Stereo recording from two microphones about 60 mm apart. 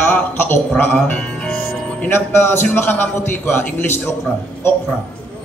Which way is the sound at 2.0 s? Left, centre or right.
Left.